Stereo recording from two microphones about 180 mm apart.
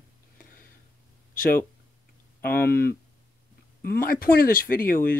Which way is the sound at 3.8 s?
55° left (ahead or behind).